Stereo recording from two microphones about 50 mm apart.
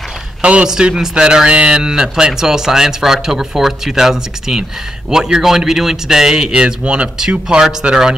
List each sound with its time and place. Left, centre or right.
0.4 s a man's voice: right
0.7 s a man's voice: centre